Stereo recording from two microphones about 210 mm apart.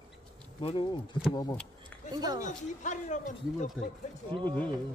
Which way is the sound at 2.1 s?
20° right (ahead or behind).